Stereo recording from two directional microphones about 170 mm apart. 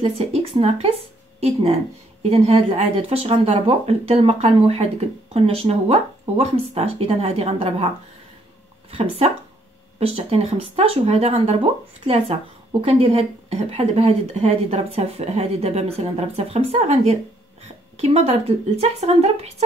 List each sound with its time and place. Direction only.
0.0 s speech: 35° right (ahead or behind)
8.9 s speech: 35° right (ahead or behind)
12.8 s speech: 35° right (ahead or behind)